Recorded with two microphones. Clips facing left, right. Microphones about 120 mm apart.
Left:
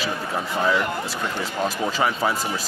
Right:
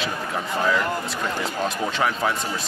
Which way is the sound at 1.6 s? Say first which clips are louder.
Left 2 dB; centre (ahead or behind).